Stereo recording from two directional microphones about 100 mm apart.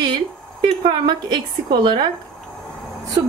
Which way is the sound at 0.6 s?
50° right (ahead or behind).